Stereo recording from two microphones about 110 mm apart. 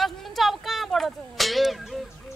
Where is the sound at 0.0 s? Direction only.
Centre (ahead or behind).